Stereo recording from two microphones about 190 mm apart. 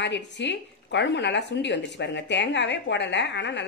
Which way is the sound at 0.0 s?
65° left (ahead or behind).